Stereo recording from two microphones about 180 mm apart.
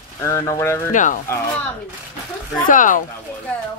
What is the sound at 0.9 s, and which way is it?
Speech, 45° left (ahead or behind).